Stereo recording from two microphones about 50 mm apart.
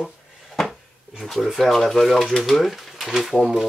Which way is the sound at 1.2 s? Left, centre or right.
Centre.